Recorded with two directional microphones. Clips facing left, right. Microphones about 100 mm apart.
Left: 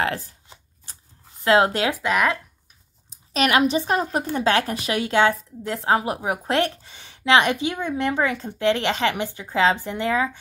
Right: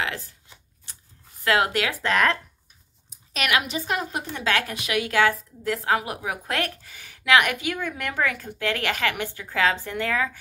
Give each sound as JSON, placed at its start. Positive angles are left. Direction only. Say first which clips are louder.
{"t": 0.0, "sound": "shuffling cards", "louder": "left 5 dB", "side_deg": 35}
{"t": 1.4, "sound": "a woman's voice", "louder": "left 4 dB", "side_deg": 25}
{"t": 2.0, "sound": "speech", "louder": "right 1 dB", "side_deg": 10}
{"t": 3.1, "sound": "a woman's voice", "louder": "left 5 dB", "side_deg": 30}